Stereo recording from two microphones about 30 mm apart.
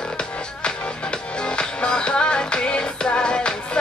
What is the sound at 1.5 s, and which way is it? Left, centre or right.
Music, left.